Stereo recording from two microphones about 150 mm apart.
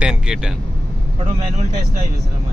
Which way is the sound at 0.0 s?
5° right (ahead or behind).